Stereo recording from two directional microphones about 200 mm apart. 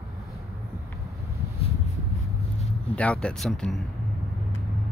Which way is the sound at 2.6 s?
30° left (ahead or behind).